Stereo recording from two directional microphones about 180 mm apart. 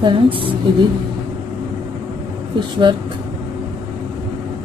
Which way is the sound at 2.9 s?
25° right (ahead or behind).